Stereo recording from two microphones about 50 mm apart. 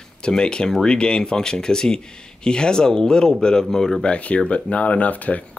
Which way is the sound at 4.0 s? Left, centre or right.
Left.